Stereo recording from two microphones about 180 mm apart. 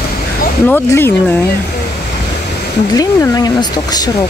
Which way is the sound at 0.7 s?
10° left (ahead or behind).